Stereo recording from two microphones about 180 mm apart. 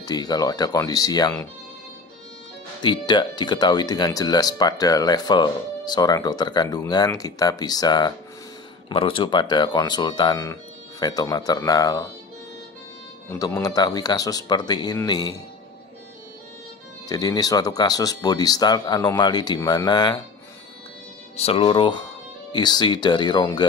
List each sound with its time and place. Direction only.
0.0 s speech: 20° left (ahead or behind)
2.8 s speech: 25° left (ahead or behind)
13.3 s speech: 20° left (ahead or behind)
17.1 s speech: 20° left (ahead or behind)
21.4 s speech: 35° left (ahead or behind)